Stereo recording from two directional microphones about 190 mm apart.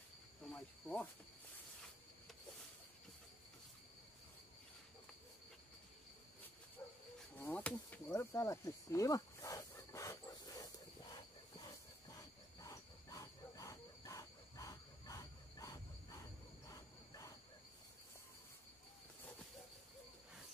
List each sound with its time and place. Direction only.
0.5 s speech: 5° left (ahead or behind)
6.8 s livestock: 10° left (ahead or behind)
7.3 s a sound: 10° left (ahead or behind)
12.5 s cricket: 20° left (ahead or behind)